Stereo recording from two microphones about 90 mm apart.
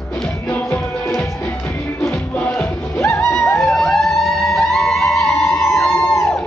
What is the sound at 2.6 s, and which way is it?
Music, 30° left (ahead or behind).